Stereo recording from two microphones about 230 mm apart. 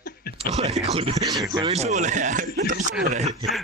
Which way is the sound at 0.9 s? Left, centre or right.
Right.